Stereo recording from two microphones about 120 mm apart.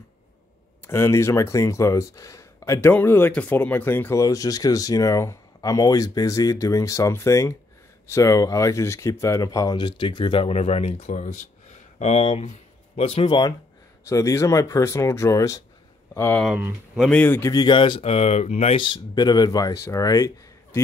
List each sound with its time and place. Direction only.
0.8 s speech: 20° left (ahead or behind); by 13.3 s 60° left (ahead or behind)
14.0 s speech: 25° left (ahead or behind)
16.9 s speech: centre (ahead or behind)
17.2 s speech: 15° left (ahead or behind)
17.5 s speech: 35° left (ahead or behind); by 18.8 s 65° left (ahead or behind)
18.8 s speech: 35° left (ahead or behind)